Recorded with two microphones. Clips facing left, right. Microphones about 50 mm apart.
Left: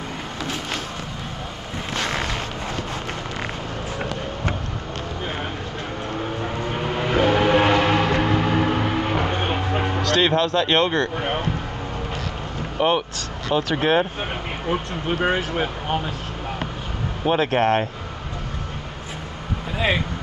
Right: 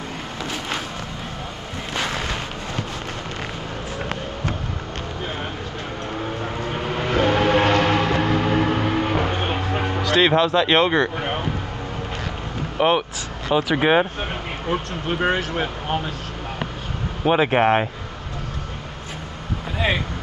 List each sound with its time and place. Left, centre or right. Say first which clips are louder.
6.1 s vehicle: even; centre
10.0 s speech: right 3 dB; centre
11.1 s vehicle: left 1 dB; centre
12.7 s speech: right 1 dB; centre
14.7 s speech: even; centre
17.2 s speech: right 2 dB; centre
17.5 s speech: right 2 dB; right